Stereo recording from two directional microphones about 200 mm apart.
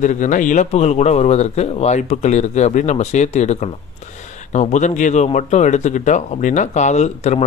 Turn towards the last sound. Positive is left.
turn(degrees=35)  # may be behind; listen again after turning